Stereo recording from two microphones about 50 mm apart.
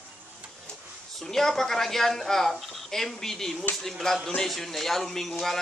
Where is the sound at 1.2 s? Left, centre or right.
Centre.